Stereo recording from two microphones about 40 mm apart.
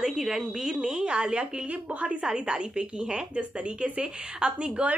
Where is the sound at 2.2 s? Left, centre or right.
Right.